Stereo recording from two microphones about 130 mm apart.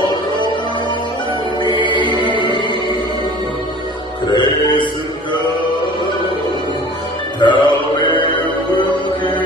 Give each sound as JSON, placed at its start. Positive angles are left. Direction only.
{"t": 1.6, "sound": "music", "side_deg": 35}
{"t": 2.3, "sound": "music", "side_deg": -35}
{"t": 4.3, "sound": "mantra", "side_deg": 40}
{"t": 7.3, "sound": "music", "side_deg": 35}